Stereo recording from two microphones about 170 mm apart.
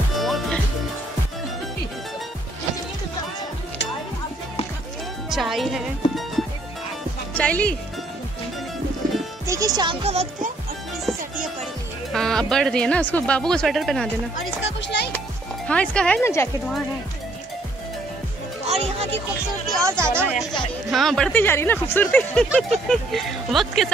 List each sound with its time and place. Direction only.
0.1 s music: centre (ahead or behind)
5.3 s speech: centre (ahead or behind)
9.5 s music: 20° right (ahead or behind)
10.0 s music: 40° right (ahead or behind)
12.1 s speech: centre (ahead or behind)
14.8 s a child's voice: 90° left
15.1 s music: 5° left (ahead or behind)
18.7 s music: 35° right (ahead or behind)
19.8 s speech: 15° right (ahead or behind)
20.9 s speech: centre (ahead or behind)
21.3 s speech: 10° left (ahead or behind)